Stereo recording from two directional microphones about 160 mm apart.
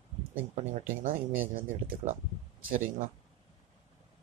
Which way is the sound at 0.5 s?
50° right (ahead or behind).